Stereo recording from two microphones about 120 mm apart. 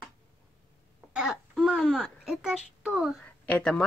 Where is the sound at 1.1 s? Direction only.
5° right (ahead or behind).